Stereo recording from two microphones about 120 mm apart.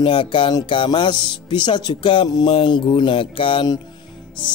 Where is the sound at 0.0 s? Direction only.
45° left (ahead or behind).